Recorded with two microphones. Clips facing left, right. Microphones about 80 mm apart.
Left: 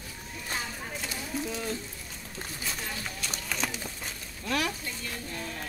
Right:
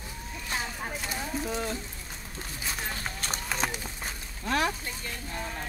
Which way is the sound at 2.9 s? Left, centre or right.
Right.